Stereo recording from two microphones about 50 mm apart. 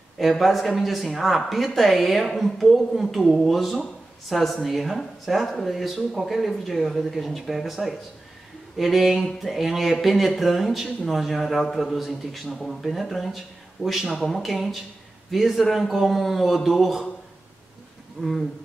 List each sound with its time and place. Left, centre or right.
0.2 s speech: centre
18.2 s speech: centre